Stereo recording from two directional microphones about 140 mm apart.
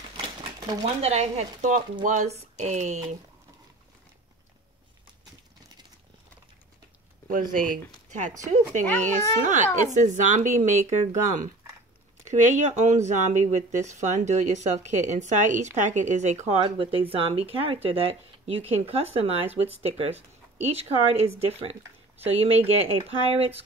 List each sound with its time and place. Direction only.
0.4 s speech: 45° right (ahead or behind)
7.2 s speech: 80° right
9.0 s speech: 60° right (ahead or behind)
12.3 s speech: 60° right (ahead or behind)
16.6 s speech: 40° right (ahead or behind)